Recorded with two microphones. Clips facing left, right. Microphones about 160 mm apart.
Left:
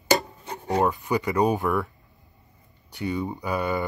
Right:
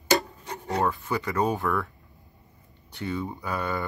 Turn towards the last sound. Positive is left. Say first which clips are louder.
# left 4 dB
turn(degrees=10)  # may be behind; listen again after turning